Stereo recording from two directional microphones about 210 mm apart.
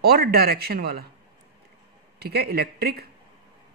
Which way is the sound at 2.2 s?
50° right (ahead or behind).